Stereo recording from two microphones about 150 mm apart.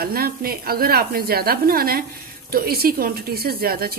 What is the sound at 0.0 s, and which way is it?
Speech, 85° right.